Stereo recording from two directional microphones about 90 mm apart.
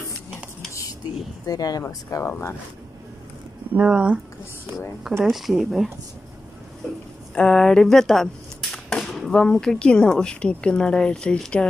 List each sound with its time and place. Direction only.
1.5 s speech: 45° left (ahead or behind)
3.7 s speech: 10° right (ahead or behind)
5.2 s a woman's voice: 5° right (ahead or behind)
7.3 s a woman's voice: 5° left (ahead or behind)